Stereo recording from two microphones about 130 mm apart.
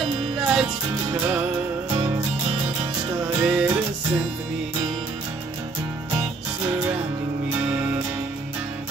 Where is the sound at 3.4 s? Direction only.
10° right (ahead or behind).